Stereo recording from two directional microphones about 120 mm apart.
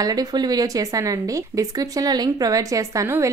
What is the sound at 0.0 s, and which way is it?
A woman's voice, 30° right (ahead or behind).